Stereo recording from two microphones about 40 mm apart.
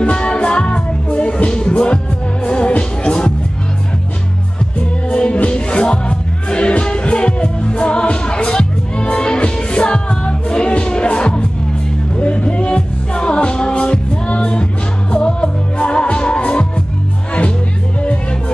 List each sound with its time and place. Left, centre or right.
0.0 s music: left
5.1 s music: left